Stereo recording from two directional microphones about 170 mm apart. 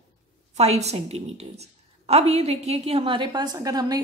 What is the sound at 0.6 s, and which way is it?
A woman's voice, 40° right (ahead or behind).